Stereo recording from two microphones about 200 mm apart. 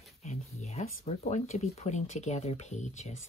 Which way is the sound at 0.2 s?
35° left (ahead or behind).